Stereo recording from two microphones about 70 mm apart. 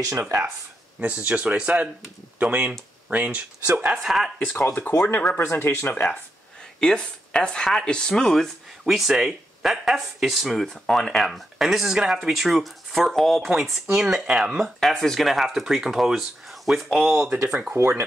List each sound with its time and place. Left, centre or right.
0.2 s speech: right
1.0 s speech: right
4.0 s speech: centre
4.6 s speech: left
6.8 s speech: centre
14.6 s speech: centre
17.7 s speech: right